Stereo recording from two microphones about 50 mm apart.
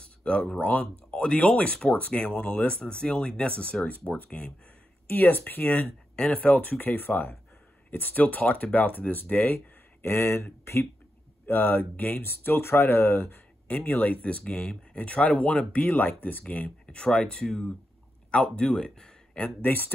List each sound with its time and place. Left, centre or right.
0.2 s speech: centre
0.6 s speech: left
1.1 s speech: centre
5.0 s speech: left
10.3 s speech: left
11.4 s speech: left
12.2 s speech: left
13.8 s speech: left
15.8 s speech: left; by 19.1 s centre
19.3 s speech: left